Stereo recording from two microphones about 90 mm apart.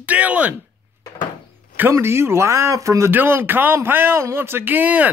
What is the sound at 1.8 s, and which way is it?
Speech, 25° right (ahead or behind).